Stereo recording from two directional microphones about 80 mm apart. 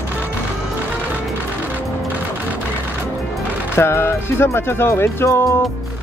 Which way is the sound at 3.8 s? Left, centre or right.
Left.